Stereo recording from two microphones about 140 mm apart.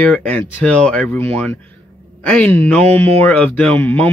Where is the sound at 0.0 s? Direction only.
5° left (ahead or behind).